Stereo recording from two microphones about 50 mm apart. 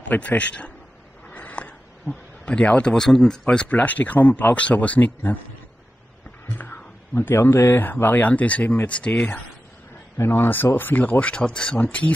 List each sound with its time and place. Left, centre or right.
0.1 s speech: left
1.3 s a sound: left
3.1 s speech: centre
3.4 s speech: left
7.2 s speech: left
10.1 s speech: left